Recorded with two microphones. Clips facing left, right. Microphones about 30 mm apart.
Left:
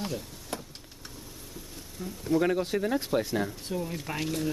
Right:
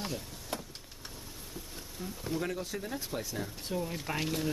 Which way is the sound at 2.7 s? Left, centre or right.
Left.